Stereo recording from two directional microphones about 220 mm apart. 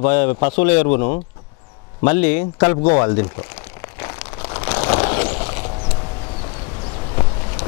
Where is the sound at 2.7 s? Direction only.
30° left (ahead or behind).